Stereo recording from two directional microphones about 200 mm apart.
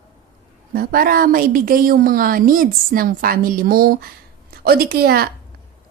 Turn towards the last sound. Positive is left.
turn(degrees=-50)  # may be behind; listen again after turning